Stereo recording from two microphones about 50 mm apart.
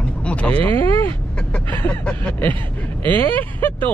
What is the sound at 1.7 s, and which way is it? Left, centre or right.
Speech, left.